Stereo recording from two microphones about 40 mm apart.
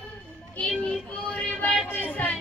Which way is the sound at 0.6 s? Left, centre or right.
Left.